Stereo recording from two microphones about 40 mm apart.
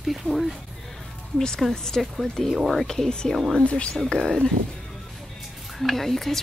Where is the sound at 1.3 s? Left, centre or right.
Centre.